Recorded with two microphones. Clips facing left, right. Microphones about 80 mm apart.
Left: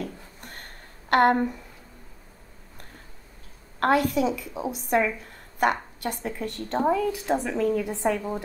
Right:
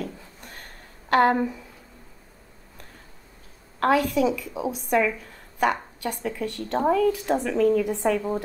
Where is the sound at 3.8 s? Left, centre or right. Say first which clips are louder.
Right 1 dB; centre.